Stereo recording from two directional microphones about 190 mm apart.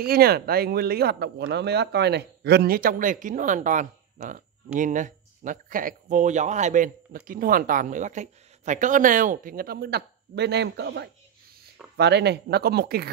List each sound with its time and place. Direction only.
0.0 s speech: 55° right (ahead or behind)